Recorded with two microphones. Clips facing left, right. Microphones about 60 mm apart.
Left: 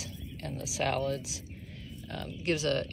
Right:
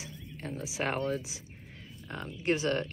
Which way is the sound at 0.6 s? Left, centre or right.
Right.